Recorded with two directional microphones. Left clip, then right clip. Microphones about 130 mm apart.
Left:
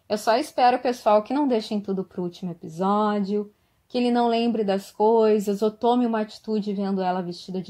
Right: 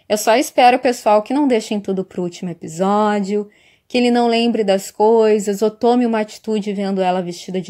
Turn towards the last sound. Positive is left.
turn(degrees=-50)  # may be behind; listen again after turning